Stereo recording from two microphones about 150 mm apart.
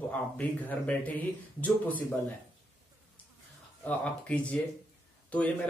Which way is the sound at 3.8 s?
10° left (ahead or behind).